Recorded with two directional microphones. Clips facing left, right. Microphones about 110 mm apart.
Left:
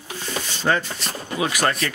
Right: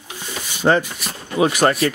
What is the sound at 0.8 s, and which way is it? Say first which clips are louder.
Speech: right 5 dB; 10° right (ahead or behind).